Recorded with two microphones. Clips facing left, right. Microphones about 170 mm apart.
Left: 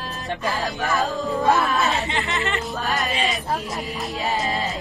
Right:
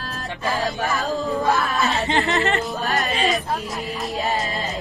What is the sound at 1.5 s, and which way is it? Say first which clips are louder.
Speech: left 3 dB; 20° left (ahead or behind).